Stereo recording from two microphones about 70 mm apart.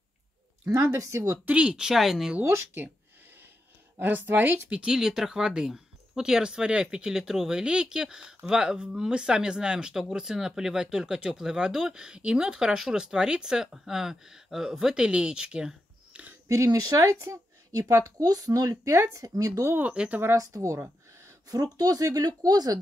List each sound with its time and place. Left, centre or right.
0.9 s speech: right
1.4 s speech: centre
2.4 s speech: right
4.0 s speech: right
4.6 s speech: centre
16.4 s speech: right
19.7 s speech: right
20.3 s speech: right